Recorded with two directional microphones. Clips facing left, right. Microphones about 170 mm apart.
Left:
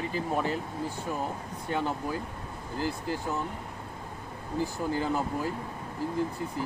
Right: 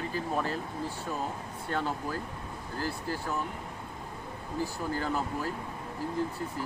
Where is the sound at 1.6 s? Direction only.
15° left (ahead or behind).